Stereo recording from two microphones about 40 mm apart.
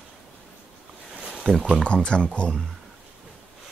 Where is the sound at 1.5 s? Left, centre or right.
Centre.